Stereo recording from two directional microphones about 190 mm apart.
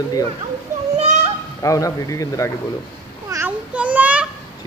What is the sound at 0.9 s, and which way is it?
Children playing, 35° right (ahead or behind).